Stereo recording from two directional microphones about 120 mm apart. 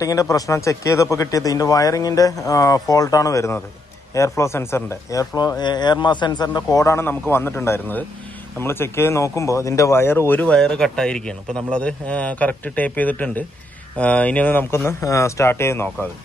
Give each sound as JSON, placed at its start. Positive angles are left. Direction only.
{"t": 0.0, "sound": "speech", "side_deg": 25}